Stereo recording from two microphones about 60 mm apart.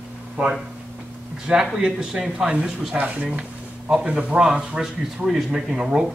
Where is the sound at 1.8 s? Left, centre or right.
Centre.